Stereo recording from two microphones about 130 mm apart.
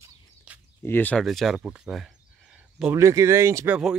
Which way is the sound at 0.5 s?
10° right (ahead or behind).